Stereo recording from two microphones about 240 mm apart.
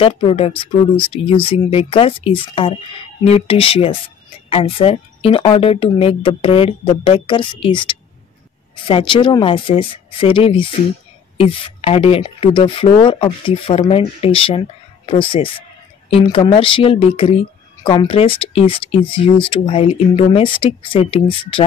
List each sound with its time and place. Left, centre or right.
0.0 s speech: left